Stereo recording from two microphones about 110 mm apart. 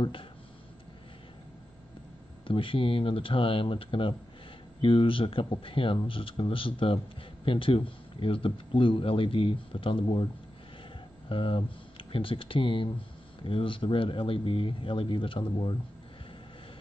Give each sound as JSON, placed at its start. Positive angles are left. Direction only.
{"t": 0.0, "sound": "speech", "side_deg": 55}
{"t": 2.4, "sound": "speech", "side_deg": 50}
{"t": 11.2, "sound": "speech", "side_deg": 50}